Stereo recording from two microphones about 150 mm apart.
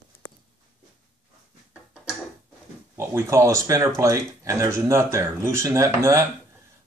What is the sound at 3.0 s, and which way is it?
Speech, 20° right (ahead or behind).